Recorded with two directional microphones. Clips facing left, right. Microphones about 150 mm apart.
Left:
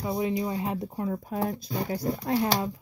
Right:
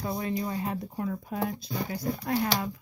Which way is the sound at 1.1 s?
40° left (ahead or behind).